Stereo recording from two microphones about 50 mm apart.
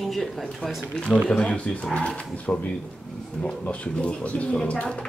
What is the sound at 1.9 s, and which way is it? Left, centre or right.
Speech, left.